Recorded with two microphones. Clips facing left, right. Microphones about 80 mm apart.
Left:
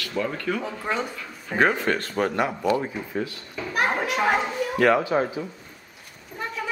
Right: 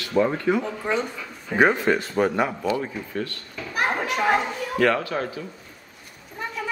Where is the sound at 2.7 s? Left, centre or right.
Centre.